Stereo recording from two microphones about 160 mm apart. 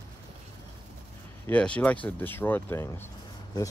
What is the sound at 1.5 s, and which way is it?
A man's voice, 10° left (ahead or behind).